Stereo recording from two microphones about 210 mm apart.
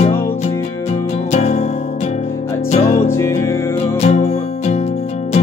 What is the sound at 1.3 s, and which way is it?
Music, 35° left (ahead or behind).